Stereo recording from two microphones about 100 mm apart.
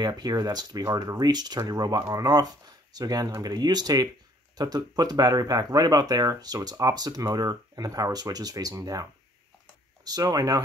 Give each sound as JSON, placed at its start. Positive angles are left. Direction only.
{"t": 0.0, "sound": "speech", "side_deg": -40}
{"t": 10.0, "sound": "speech", "side_deg": -40}